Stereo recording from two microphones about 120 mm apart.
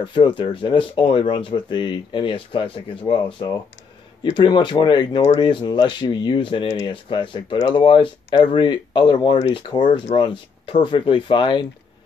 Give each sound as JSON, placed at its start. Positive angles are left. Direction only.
{"t": 0.0, "sound": "speech", "side_deg": 45}